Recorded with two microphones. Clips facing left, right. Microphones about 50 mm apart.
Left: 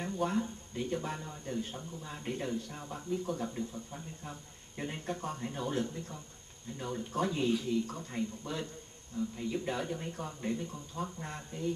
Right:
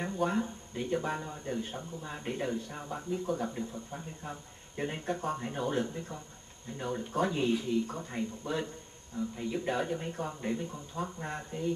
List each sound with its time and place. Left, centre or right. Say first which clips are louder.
0.3 s speech: right 2 dB; centre